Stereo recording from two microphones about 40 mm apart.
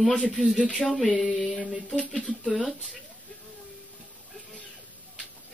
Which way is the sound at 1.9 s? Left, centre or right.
Left.